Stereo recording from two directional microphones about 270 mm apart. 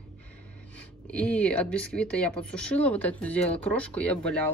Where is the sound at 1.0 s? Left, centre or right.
Centre.